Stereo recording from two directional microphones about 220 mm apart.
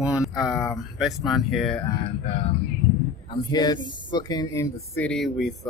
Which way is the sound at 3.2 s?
20° left (ahead or behind).